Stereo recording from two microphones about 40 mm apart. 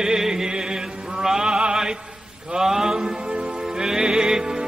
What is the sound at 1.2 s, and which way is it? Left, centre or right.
Music, centre.